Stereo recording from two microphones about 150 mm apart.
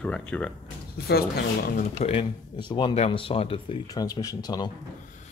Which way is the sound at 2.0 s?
40° left (ahead or behind).